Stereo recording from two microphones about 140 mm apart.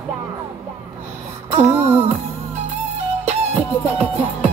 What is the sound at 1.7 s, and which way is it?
Child singing, 15° right (ahead or behind).